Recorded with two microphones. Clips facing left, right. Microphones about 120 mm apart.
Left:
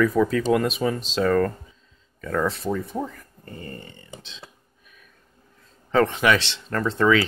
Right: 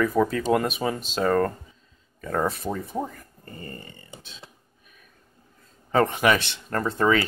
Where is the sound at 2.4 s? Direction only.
55° right (ahead or behind).